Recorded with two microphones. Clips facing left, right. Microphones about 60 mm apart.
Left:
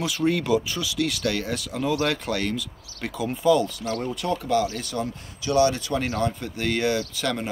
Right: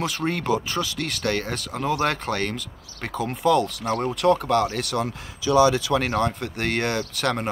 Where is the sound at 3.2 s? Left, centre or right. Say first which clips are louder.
Even; right.